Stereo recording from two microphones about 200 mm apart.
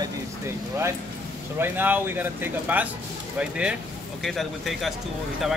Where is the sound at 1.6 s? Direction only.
10° right (ahead or behind).